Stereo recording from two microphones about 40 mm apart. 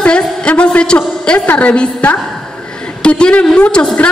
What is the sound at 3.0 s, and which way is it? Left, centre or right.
Speech, left.